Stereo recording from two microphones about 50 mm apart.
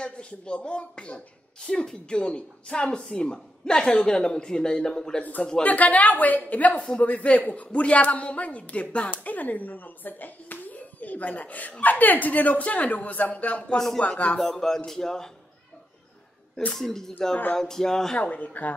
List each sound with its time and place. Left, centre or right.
0.0 s a woman's voice: left
5.6 s a man's voice: left
14.5 s a woman's voice: centre
16.7 s a woman's voice: centre
18.1 s a man's voice: left